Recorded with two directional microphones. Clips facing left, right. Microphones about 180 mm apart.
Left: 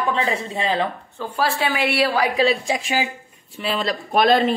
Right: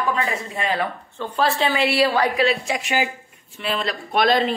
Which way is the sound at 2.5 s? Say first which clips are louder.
Left 2 dB; 30° left (ahead or behind).